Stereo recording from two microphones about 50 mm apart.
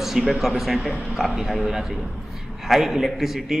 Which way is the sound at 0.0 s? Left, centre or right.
Centre.